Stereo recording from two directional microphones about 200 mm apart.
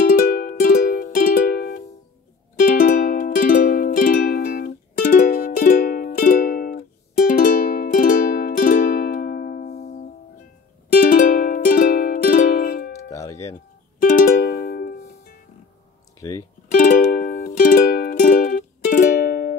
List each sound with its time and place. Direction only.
0.0 s music: 45° left (ahead or behind)
9.8 s music: 35° left (ahead or behind)
13.1 s music: 15° left (ahead or behind)
14.0 s music: 45° left (ahead or behind)
16.2 s music: 20° left (ahead or behind)
16.7 s music: 45° left (ahead or behind)